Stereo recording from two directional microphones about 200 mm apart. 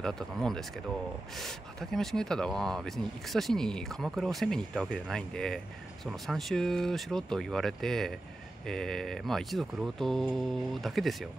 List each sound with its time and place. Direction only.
0.0 s speech: 5° left (ahead or behind)